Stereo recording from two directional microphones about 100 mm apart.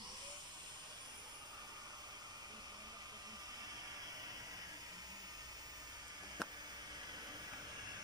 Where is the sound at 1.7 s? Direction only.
40° right (ahead or behind).